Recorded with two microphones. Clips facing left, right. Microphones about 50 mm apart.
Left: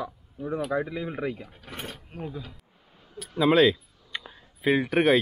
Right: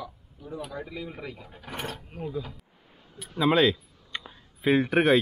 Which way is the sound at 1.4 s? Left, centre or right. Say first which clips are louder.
Right 3 dB; centre.